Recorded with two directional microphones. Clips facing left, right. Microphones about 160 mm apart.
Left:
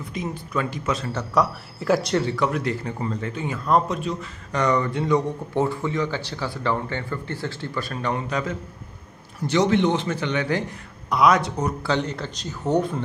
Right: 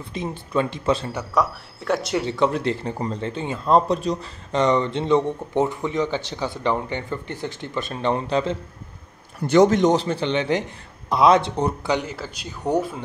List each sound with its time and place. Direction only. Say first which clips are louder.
0.0 s speech: even; 30° right (ahead or behind)
1.3 s speech: left 1 dB; centre (ahead or behind)
2.1 s speech: right 1 dB; 20° right (ahead or behind)
4.5 s speech: right 2 dB; 25° right (ahead or behind)
9.5 s a man's voice: right 4 dB; 45° right (ahead or behind); by 11.7 s 30° right (ahead or behind)
11.8 s speech: even; 10° right (ahead or behind)